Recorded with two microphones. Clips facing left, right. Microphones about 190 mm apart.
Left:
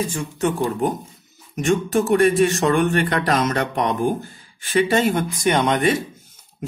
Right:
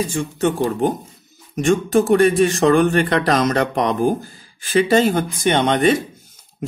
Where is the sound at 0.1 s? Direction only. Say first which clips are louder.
Right 3 dB; 30° right (ahead or behind).